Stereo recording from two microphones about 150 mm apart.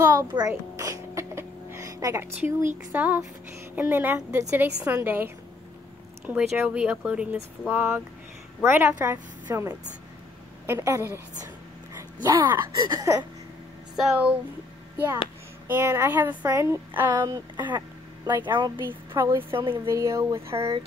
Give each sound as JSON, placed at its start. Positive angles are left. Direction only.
{"t": 0.3, "sound": "a sound", "side_deg": -25}
{"t": 2.9, "sound": "speech", "side_deg": -10}
{"t": 13.9, "sound": "speech", "side_deg": -5}
{"t": 15.7, "sound": "speech", "side_deg": -15}
{"t": 17.6, "sound": "a sound", "side_deg": -30}
{"t": 18.4, "sound": "speech", "side_deg": -30}
{"t": 18.8, "sound": "speech", "side_deg": -15}